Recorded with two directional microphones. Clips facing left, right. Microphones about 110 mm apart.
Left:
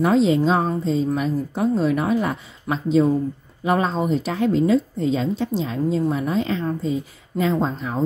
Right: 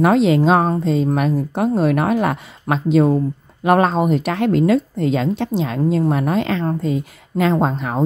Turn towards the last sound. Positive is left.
turn(degrees=-65)  # may be behind; listen again after turning